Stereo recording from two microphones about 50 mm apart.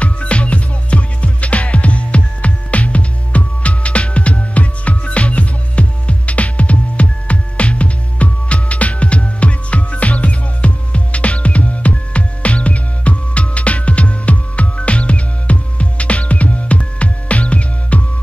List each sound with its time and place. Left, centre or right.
0.0 s music: left